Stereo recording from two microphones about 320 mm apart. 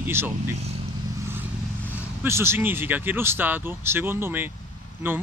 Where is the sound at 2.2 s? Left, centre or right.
Centre.